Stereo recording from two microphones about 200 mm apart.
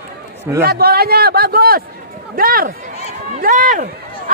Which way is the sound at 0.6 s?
50° right (ahead or behind).